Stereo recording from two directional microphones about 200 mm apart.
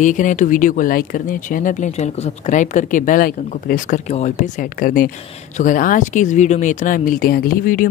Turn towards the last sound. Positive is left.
turn(degrees=45)  # may be behind; listen again after turning